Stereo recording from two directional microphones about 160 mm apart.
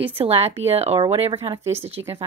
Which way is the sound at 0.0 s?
40° right (ahead or behind).